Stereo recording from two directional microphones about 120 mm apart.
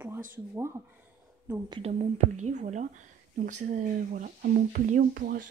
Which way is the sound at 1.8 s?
65° right (ahead or behind).